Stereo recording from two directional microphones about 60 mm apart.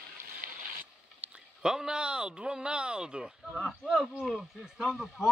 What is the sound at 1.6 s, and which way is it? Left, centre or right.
A man's voice, centre.